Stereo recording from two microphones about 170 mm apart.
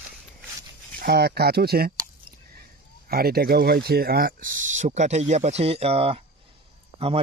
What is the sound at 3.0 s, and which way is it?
Speech, 65° right (ahead or behind).